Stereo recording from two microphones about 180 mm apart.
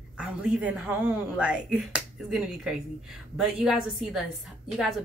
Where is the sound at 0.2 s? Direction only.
5° right (ahead or behind).